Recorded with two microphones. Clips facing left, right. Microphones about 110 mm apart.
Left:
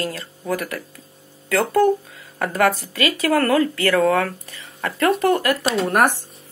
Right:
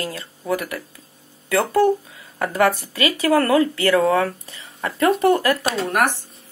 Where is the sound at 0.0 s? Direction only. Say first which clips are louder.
Left 2 dB; 20° right (ahead or behind).